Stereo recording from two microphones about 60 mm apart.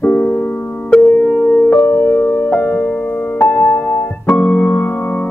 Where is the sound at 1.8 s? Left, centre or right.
Left.